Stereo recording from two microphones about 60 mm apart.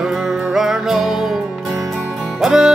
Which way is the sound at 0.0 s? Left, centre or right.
Centre.